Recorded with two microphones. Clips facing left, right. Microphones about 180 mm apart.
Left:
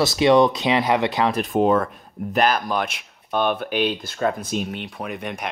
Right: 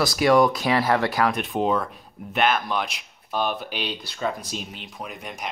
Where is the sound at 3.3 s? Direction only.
55° left (ahead or behind).